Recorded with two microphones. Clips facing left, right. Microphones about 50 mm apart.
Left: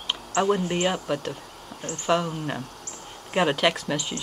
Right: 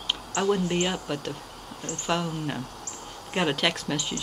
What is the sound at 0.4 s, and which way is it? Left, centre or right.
Speech, centre.